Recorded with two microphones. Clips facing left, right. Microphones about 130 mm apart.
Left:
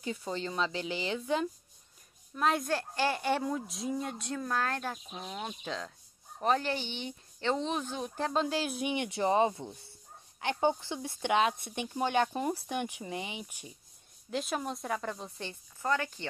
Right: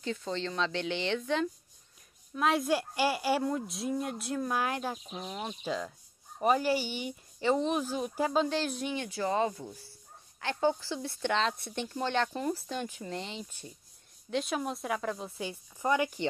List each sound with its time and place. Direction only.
0.0 s speech: 10° left (ahead or behind)
2.3 s a woman's voice: centre (ahead or behind)
8.9 s speech: 20° left (ahead or behind)
14.3 s a woman's voice: centre (ahead or behind)